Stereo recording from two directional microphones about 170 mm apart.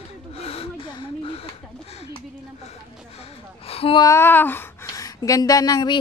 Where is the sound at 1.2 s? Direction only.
35° left (ahead or behind).